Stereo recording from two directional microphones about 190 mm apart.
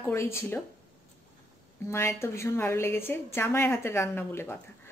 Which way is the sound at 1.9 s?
15° left (ahead or behind).